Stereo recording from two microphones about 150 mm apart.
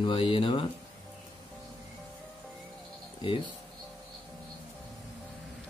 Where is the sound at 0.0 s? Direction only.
35° left (ahead or behind).